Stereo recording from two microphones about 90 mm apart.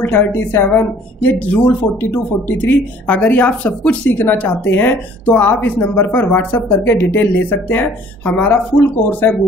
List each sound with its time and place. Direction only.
0.0 s speech: 25° left (ahead or behind)